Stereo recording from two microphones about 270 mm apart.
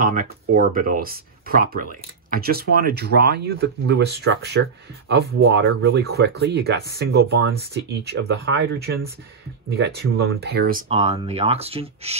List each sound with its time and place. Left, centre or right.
0.0 s speech: right